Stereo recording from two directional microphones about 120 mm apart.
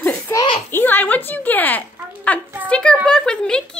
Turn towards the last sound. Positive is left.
turn(degrees=5)  # may be behind; listen again after turning